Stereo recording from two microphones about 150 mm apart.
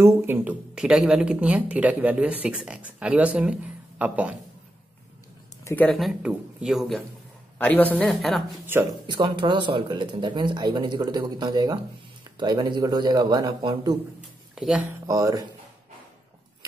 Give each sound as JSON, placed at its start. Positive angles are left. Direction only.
{"t": 0.0, "sound": "speech", "side_deg": -15}
{"t": 0.7, "sound": "speech", "side_deg": -5}
{"t": 5.6, "sound": "a sound", "side_deg": 20}
{"t": 5.9, "sound": "speech", "side_deg": 0}
{"t": 7.5, "sound": "a woman's voice", "side_deg": 10}
{"t": 9.0, "sound": "speech", "side_deg": -30}
{"t": 14.5, "sound": "speech", "side_deg": -5}
{"t": 15.0, "sound": "speech", "side_deg": -25}